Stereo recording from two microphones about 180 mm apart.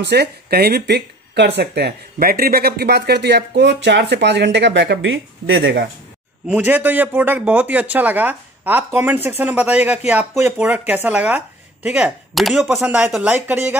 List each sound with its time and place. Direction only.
0.0 s speech: 65° right (ahead or behind); by 5.9 s 90° right
6.4 s a man's voice: 10° right (ahead or behind)